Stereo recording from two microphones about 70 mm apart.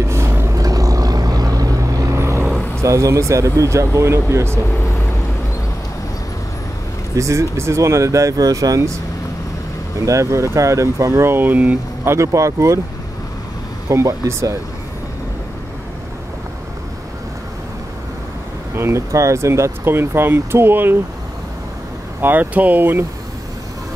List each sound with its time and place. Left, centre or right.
0.0 s vehicle: right
0.6 s vehicle: right
2.1 s vehicle: right
2.8 s speech: right
7.2 s speech: right
9.9 s speech: right
12.0 s speech: right
13.8 s speech: right
18.8 s speech: right
22.2 s speech: right